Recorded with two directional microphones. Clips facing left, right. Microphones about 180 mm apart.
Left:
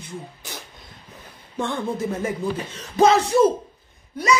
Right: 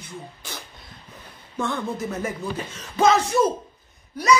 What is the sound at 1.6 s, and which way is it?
Speech, 30° left (ahead or behind).